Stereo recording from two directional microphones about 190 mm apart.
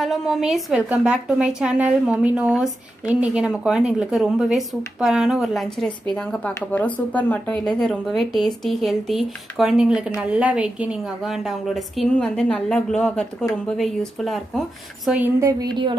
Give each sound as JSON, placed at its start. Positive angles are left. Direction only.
{"t": 0.0, "sound": "a woman's voice", "side_deg": 0}
{"t": 15.6, "sound": "speech", "side_deg": -25}